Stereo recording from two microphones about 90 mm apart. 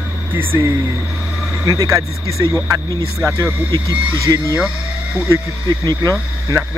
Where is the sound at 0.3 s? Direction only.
25° right (ahead or behind).